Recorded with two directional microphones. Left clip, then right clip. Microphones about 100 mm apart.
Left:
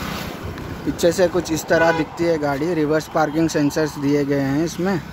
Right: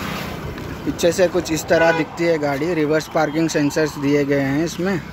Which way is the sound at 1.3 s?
20° left (ahead or behind).